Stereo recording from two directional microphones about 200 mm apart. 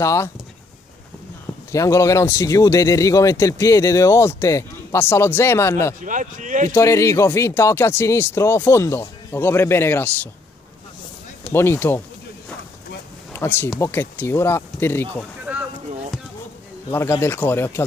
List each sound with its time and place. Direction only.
0.0 s speech: 15° left (ahead or behind)
1.7 s speech: 15° left (ahead or behind)
5.9 s a man's voice: 40° right (ahead or behind)
6.7 s speech: 15° left (ahead or behind)
11.4 s speech: 10° left (ahead or behind)
13.3 s speech: 10° left (ahead or behind)
15.5 s a sound: 10° right (ahead or behind)
16.9 s speech: 10° left (ahead or behind)